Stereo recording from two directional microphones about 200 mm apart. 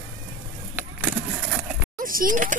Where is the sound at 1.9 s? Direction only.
45° right (ahead or behind).